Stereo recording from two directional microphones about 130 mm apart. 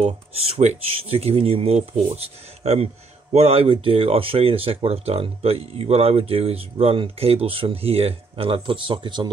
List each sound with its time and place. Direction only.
0.0 s speech: 55° right (ahead or behind); by 9.3 s 35° right (ahead or behind)